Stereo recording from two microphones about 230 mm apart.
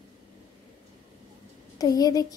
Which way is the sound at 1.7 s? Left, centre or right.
Centre.